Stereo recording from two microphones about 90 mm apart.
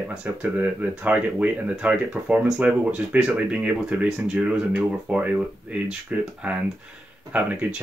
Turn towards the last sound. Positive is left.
turn(degrees=-15)  # may be behind; listen again after turning